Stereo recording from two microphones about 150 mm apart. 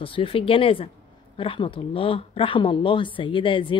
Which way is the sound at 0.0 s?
35° left (ahead or behind).